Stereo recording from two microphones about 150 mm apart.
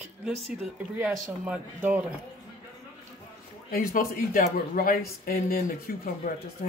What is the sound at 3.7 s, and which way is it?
Speech, 65° left (ahead or behind).